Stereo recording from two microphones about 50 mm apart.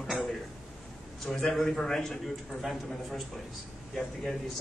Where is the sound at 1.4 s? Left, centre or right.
Centre.